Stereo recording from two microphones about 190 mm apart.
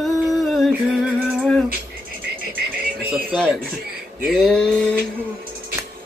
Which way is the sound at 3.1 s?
Centre (ahead or behind).